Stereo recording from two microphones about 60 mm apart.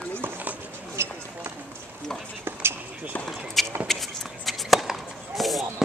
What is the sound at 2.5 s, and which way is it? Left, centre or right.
Basketball bounce, right.